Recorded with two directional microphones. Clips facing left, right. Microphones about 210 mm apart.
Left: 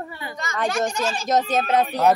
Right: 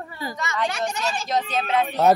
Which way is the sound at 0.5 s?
45° left (ahead or behind).